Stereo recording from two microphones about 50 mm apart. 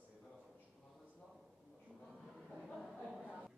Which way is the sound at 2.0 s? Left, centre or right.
Centre.